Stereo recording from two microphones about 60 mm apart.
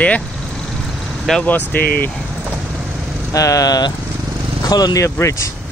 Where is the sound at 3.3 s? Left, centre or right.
Left.